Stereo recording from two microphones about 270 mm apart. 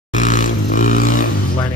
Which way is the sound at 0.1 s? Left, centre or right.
Left.